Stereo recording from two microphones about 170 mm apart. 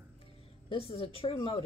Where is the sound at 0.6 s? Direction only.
35° left (ahead or behind).